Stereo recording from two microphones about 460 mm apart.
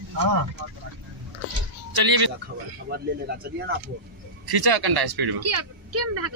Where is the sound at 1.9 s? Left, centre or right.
Right.